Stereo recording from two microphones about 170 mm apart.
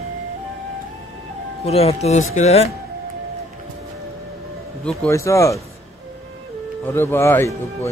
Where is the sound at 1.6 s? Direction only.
35° left (ahead or behind).